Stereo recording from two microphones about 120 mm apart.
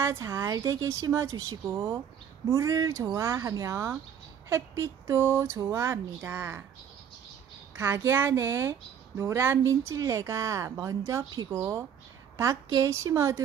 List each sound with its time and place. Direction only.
0.0 s a woman's voice: 25° right (ahead or behind)
7.7 s a woman's voice: 20° right (ahead or behind)